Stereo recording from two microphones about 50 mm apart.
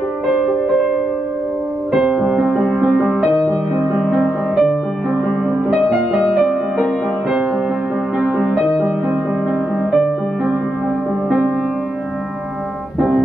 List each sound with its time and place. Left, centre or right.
0.3 s music: centre
2.0 s music: right
2.9 s music: centre
8.2 s music: centre